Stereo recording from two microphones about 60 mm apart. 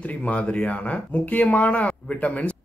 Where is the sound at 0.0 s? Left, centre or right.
Left.